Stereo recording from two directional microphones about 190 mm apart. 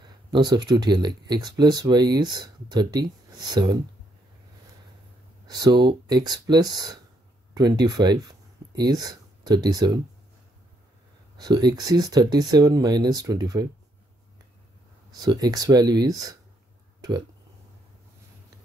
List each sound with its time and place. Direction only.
0.0 s a sound: 20° right (ahead or behind)
0.7 s speech: 20° right (ahead or behind)
5.5 s speech: 20° right (ahead or behind)
11.3 s speech: 20° right (ahead or behind)
15.0 s speech: 20° right (ahead or behind)